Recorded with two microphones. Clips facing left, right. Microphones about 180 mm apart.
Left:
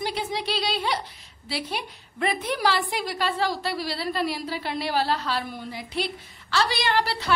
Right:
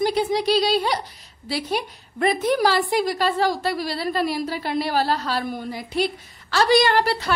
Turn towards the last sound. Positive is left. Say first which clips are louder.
# right 3 dB
turn(degrees=-45)  # may be behind; listen again after turning